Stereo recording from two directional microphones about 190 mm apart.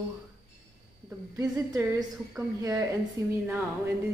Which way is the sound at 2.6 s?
15° right (ahead or behind).